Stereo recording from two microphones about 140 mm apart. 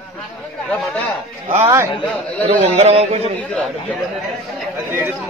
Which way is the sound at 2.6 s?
50° right (ahead or behind).